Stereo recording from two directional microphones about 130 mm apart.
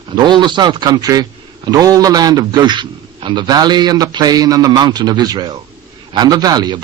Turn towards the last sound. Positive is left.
turn(degrees=-30)  # may be behind; listen again after turning